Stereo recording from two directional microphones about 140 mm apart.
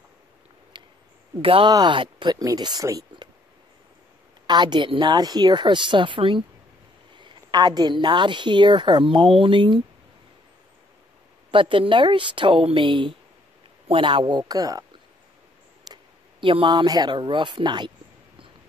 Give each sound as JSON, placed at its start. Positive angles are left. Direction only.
{"t": 0.7, "sound": "owl", "side_deg": -35}
{"t": 1.4, "sound": "a woman's voice", "side_deg": -40}
{"t": 4.5, "sound": "a woman's voice", "side_deg": -30}
{"t": 7.5, "sound": "a woman's voice", "side_deg": -30}
{"t": 11.5, "sound": "a woman's voice", "side_deg": -40}